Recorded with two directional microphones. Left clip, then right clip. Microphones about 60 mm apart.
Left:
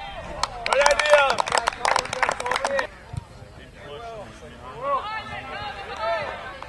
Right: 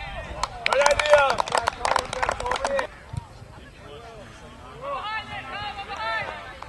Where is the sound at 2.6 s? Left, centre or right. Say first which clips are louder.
Left 1 dB; centre.